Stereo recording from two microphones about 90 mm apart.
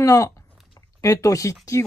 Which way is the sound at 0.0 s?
40° left (ahead or behind).